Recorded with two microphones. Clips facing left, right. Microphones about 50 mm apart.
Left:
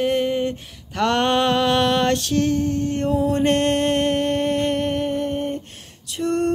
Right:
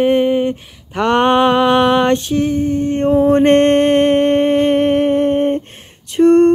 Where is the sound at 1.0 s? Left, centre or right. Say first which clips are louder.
Right 6 dB; right.